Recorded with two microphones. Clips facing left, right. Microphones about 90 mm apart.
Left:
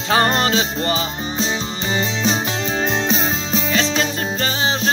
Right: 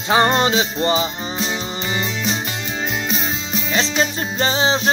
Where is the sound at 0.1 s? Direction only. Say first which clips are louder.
Right 1 dB; 15° right (ahead or behind).